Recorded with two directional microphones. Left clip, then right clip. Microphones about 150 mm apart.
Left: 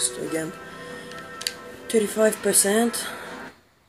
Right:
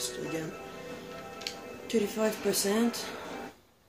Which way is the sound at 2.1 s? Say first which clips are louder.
Left 9 dB; centre (ahead or behind).